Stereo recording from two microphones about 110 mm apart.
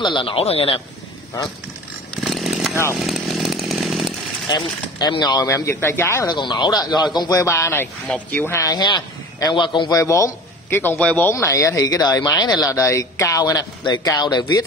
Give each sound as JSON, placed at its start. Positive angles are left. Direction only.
{"t": 0.0, "sound": "speech", "side_deg": 50}
{"t": 2.2, "sound": "chainsaw", "side_deg": 0}
{"t": 4.5, "sound": "a man's voice", "side_deg": 40}
{"t": 6.2, "sound": "a man's voice", "side_deg": 40}
{"t": 9.9, "sound": "a man's voice", "side_deg": 30}